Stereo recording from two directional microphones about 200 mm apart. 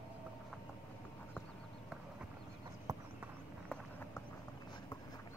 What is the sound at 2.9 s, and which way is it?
Clip-clop, 15° right (ahead or behind).